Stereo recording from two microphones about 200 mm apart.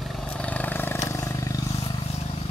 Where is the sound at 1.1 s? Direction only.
15° left (ahead or behind).